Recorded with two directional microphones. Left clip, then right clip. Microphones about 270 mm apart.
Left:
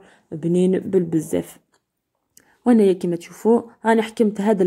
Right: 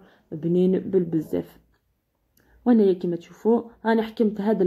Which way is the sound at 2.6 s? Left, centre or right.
Left.